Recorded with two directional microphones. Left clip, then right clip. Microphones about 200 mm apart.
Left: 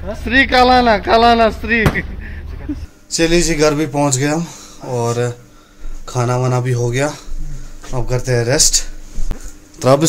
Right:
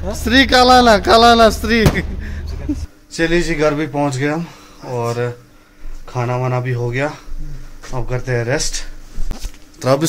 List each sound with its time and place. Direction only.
0.2 s speech: 20° right (ahead or behind)
3.1 s speech: 5° left (ahead or behind)
9.3 s a sound: centre (ahead or behind)
9.8 s a man's voice: 15° left (ahead or behind)